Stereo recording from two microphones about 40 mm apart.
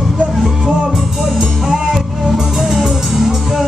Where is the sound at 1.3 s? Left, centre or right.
Centre.